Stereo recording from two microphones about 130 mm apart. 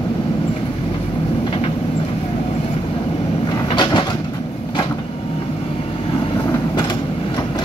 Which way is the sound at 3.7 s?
35° left (ahead or behind).